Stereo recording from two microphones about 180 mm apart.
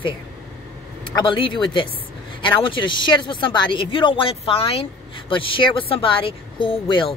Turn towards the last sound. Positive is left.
turn(degrees=30)  # may be behind; listen again after turning